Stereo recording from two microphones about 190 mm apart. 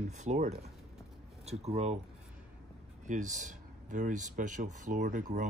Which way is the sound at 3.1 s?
40° right (ahead or behind).